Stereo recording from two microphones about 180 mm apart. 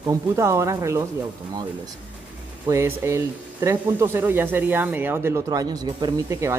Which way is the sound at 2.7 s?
15° right (ahead or behind).